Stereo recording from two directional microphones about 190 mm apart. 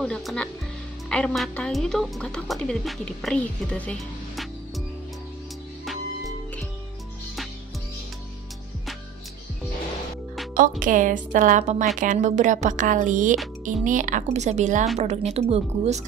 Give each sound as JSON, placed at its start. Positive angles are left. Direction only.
{"t": 0.0, "sound": "speech", "side_deg": 5}
{"t": 10.8, "sound": "a woman's voice", "side_deg": -45}